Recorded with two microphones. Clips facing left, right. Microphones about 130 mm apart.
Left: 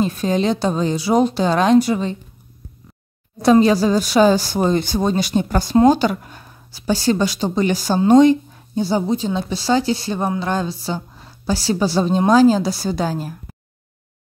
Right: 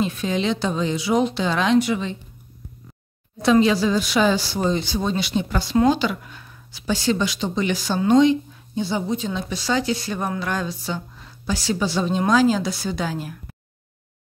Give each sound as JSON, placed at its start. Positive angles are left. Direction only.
{"t": 0.0, "sound": "a woman's voice", "side_deg": 40}
{"t": 3.4, "sound": "a woman's voice", "side_deg": 40}